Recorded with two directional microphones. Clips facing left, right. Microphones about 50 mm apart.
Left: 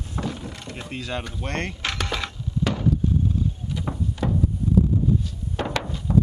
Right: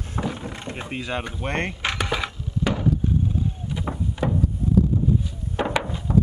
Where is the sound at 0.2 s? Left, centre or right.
Centre.